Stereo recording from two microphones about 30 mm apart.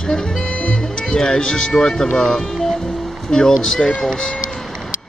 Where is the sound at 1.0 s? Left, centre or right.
Left.